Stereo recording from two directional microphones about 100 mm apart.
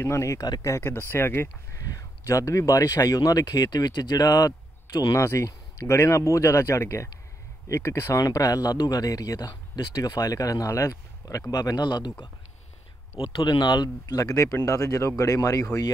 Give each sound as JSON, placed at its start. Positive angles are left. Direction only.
{"t": 0.0, "sound": "speech", "side_deg": 30}